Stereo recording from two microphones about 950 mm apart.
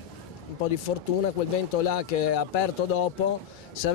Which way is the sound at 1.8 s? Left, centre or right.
Left.